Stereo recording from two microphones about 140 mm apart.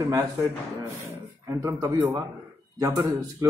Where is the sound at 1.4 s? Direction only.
25° right (ahead or behind).